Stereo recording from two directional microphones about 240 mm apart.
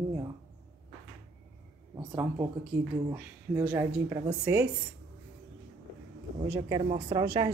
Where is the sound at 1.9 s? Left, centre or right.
Centre.